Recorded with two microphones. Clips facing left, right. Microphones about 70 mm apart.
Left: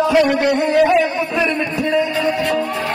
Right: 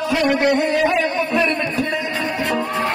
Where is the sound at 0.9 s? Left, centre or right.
Centre.